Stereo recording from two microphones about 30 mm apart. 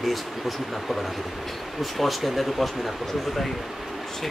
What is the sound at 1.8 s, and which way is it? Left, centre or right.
Speech, centre.